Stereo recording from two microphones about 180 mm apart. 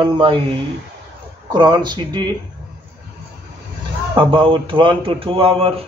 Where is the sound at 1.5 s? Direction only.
25° right (ahead or behind).